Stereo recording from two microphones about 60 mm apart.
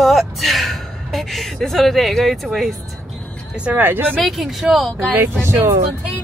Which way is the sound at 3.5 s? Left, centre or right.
Right.